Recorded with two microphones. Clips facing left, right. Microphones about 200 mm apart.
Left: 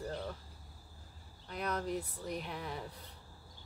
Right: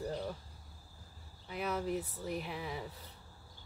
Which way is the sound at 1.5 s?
5° right (ahead or behind).